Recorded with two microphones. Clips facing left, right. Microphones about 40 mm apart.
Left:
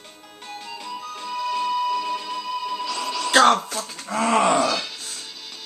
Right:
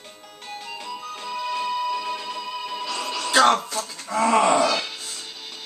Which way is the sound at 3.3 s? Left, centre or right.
Left.